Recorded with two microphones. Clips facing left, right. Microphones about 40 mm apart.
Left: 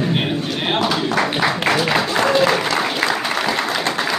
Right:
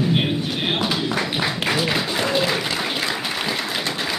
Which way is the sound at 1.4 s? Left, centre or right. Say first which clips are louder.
Left 5 dB; centre.